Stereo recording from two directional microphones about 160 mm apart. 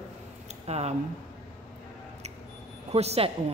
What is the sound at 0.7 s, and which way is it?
Speech, 40° right (ahead or behind).